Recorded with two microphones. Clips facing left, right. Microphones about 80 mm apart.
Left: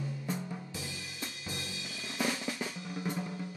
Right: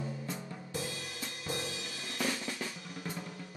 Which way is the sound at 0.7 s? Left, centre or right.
Right.